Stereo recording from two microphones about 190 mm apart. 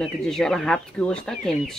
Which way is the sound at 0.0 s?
Centre (ahead or behind).